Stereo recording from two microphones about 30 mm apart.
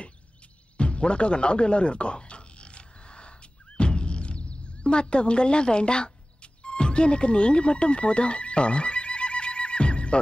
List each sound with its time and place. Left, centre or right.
0.7 s music: left
6.6 s neigh: left